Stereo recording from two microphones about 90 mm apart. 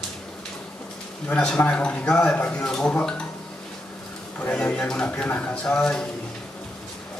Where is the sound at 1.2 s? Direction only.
10° left (ahead or behind).